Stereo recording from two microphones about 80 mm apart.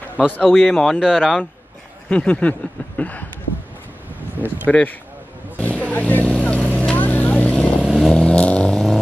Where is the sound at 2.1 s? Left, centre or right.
Centre.